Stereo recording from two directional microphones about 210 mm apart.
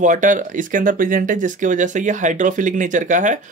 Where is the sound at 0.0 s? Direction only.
35° right (ahead or behind).